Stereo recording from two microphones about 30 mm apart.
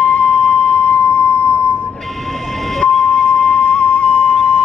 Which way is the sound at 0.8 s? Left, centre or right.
Left.